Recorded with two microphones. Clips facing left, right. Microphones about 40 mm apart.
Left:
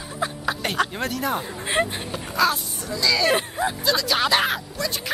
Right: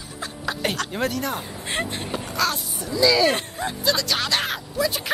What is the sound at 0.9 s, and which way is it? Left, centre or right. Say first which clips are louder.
Speech: even; centre.